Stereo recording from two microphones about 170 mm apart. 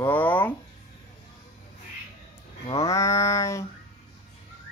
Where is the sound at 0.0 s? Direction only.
10° left (ahead or behind).